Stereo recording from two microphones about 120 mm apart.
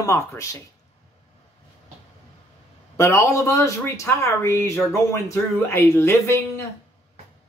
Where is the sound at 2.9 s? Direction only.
25° left (ahead or behind).